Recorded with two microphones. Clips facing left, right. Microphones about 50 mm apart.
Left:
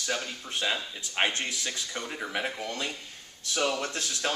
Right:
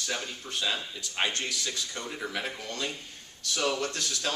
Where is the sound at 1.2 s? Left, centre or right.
Left.